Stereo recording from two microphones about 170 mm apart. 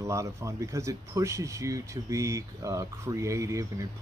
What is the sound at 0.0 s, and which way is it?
Speech, 15° right (ahead or behind).